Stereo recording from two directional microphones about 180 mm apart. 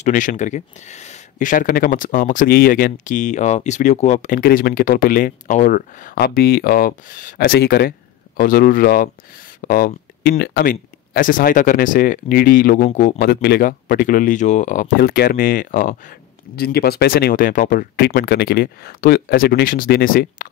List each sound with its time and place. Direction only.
0.0 s speech: 45° left (ahead or behind)
13.2 s speech: 60° left (ahead or behind)